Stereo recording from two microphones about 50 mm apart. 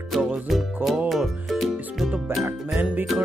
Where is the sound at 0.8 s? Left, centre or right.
Centre.